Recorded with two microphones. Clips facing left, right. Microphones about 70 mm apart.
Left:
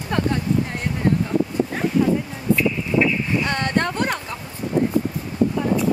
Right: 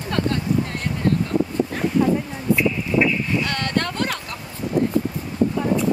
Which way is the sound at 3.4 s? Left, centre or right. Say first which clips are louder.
Left 2 dB; left.